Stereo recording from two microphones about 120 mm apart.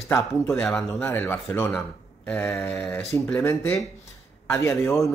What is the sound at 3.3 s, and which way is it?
Speech, 20° left (ahead or behind).